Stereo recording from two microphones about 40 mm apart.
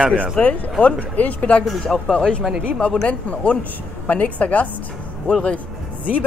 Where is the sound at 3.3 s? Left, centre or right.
Left.